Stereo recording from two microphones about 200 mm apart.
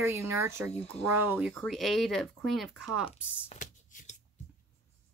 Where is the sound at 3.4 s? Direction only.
40° left (ahead or behind).